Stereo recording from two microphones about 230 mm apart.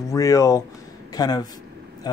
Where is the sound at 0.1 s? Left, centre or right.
Centre.